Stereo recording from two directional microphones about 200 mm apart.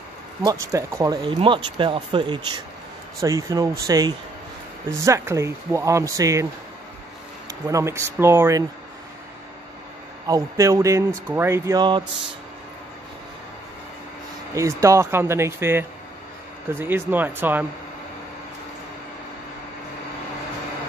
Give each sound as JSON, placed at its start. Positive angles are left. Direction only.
{"t": 0.4, "sound": "speech", "side_deg": -20}
{"t": 7.4, "sound": "speech", "side_deg": -15}
{"t": 10.2, "sound": "speech", "side_deg": -15}
{"t": 14.5, "sound": "speech", "side_deg": -15}